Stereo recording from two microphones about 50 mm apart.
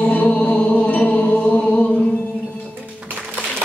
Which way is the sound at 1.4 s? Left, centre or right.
Left.